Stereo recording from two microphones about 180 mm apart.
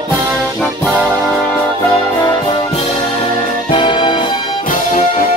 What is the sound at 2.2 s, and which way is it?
Music, 25° left (ahead or behind).